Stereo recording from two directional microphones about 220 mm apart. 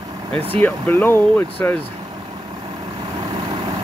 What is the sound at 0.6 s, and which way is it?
Speech, 10° left (ahead or behind).